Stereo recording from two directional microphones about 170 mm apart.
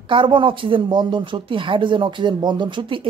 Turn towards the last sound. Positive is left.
turn(degrees=-30)  # may be behind; listen again after turning